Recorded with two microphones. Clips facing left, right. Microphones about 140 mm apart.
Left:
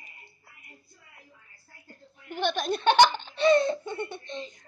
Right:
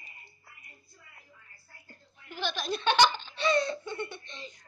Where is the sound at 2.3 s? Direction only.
55° left (ahead or behind).